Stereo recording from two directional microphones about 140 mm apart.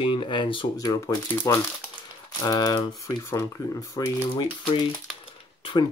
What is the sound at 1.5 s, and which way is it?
Speech, 20° left (ahead or behind).